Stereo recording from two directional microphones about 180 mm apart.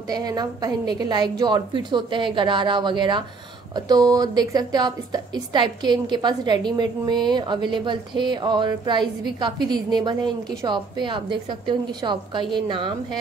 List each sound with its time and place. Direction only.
0.1 s a woman's voice: 20° right (ahead or behind)